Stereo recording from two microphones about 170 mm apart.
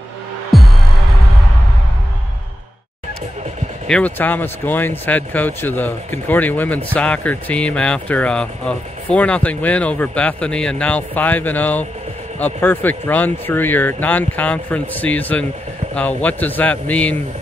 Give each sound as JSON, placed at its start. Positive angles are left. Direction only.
{"t": 0.5, "sound": "music", "side_deg": 0}
{"t": 3.8, "sound": "speech", "side_deg": 5}